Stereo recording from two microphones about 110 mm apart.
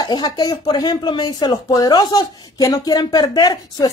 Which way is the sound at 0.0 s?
40° left (ahead or behind).